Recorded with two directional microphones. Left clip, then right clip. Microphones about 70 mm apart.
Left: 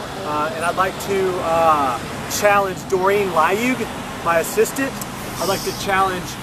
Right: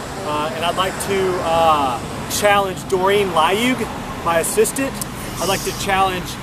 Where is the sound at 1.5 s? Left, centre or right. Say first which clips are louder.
Right 1 dB; centre.